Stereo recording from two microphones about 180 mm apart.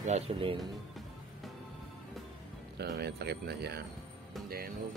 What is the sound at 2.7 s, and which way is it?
Speech, 65° right (ahead or behind).